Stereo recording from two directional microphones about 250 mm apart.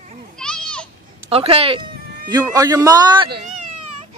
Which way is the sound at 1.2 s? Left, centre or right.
Right.